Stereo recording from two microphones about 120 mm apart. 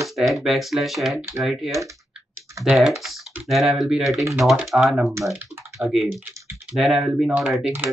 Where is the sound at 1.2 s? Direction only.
20° right (ahead or behind).